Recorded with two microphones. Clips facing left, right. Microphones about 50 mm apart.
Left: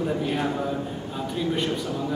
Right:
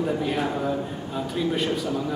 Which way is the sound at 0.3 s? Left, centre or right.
Centre.